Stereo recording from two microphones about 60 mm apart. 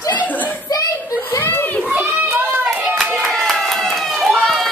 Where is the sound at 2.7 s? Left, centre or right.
Right.